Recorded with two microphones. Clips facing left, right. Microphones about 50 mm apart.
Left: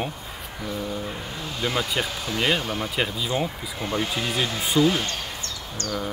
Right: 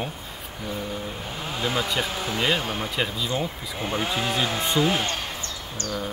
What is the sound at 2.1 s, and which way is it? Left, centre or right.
Speech, right.